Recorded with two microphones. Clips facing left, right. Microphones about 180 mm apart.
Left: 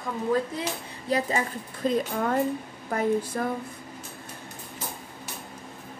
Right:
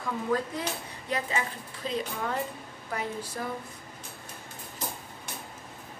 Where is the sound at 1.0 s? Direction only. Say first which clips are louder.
Left 5 dB; 35° left (ahead or behind).